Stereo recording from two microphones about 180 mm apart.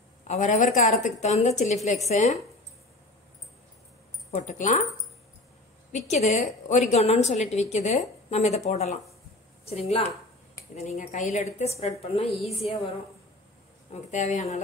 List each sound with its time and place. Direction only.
0.3 s a woman's voice: 40° left (ahead or behind)
4.3 s a woman's voice: 40° left (ahead or behind)
5.9 s a woman's voice: 40° left (ahead or behind)
14.1 s a woman's voice: 40° left (ahead or behind)